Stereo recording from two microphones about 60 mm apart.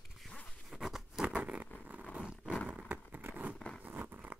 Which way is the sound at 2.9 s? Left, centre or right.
Right.